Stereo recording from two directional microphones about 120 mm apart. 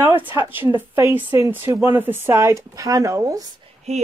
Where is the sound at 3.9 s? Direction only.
65° right (ahead or behind).